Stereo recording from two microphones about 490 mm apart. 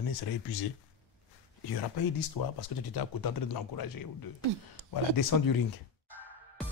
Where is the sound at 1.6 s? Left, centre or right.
Left.